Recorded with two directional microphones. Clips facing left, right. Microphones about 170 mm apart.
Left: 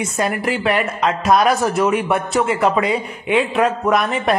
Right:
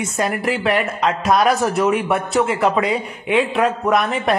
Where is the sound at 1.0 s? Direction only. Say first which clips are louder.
Left 2 dB; 45° left (ahead or behind).